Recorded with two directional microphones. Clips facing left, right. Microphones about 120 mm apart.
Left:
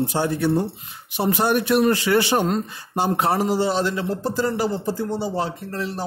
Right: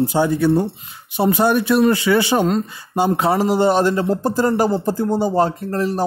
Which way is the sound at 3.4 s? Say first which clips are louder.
Right 5 dB; 60° right (ahead or behind).